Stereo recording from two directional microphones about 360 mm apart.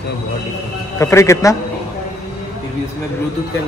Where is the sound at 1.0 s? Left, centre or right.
Centre.